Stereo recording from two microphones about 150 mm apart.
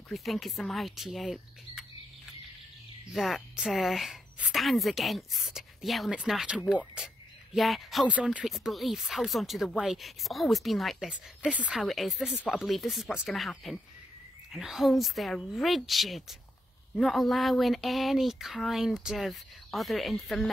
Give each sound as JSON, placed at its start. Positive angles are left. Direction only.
{"t": 0.1, "sound": "speech", "side_deg": 0}
{"t": 3.1, "sound": "speech", "side_deg": 0}